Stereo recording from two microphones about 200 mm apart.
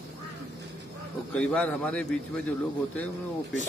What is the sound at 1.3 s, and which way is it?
Speech, 5° left (ahead or behind).